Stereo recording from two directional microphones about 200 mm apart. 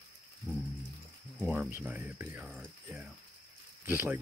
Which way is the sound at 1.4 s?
10° right (ahead or behind).